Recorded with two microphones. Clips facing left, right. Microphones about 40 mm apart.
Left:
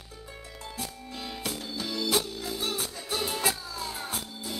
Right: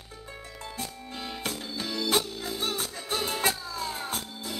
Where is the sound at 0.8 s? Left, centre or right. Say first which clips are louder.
Even; centre.